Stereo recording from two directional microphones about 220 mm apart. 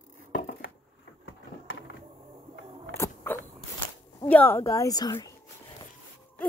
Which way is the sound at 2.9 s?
10° left (ahead or behind).